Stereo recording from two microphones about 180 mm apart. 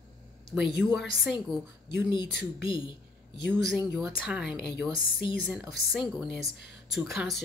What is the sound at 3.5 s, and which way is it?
Speech, centre (ahead or behind).